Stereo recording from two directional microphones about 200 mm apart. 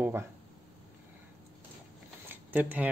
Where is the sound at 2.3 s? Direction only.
10° right (ahead or behind).